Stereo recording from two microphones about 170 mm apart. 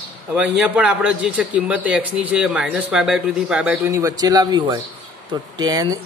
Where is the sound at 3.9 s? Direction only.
20° right (ahead or behind).